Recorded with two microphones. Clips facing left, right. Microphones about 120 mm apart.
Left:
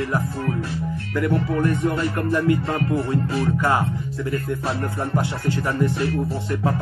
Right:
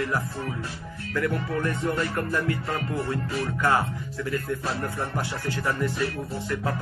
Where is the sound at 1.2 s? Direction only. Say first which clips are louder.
Left 5 dB; 20° left (ahead or behind).